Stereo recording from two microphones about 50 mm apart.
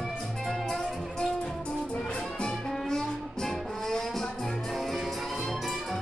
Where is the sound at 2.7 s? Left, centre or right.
Centre.